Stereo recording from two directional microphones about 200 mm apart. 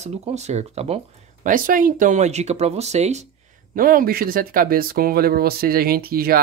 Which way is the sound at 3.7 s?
45° right (ahead or behind).